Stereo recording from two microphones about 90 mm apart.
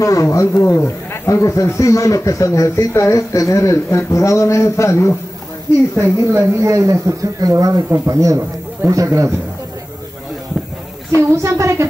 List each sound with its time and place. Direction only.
0.0 s speech: 40° left (ahead or behind)
5.9 s speech: 30° right (ahead or behind)
11.4 s speech: 35° right (ahead or behind)